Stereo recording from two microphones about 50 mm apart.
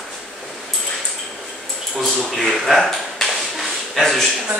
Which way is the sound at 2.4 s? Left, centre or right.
Centre.